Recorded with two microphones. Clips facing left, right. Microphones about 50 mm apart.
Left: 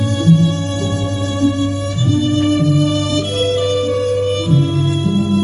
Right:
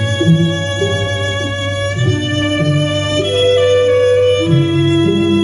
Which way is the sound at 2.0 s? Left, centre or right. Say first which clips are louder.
Left 4 dB; right.